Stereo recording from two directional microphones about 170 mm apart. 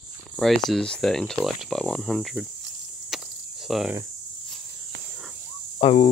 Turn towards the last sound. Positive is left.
turn(degrees=35)  # may be behind; listen again after turning